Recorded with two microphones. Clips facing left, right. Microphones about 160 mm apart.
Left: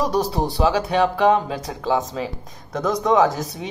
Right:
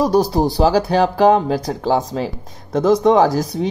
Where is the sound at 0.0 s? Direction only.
35° right (ahead or behind).